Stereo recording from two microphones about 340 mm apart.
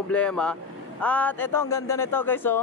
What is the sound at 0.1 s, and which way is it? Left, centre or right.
A man's voice, centre.